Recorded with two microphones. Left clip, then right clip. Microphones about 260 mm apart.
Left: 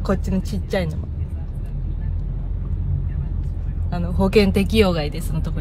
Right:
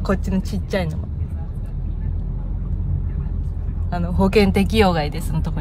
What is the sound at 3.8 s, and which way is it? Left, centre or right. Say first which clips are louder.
Speech: right 2 dB; centre.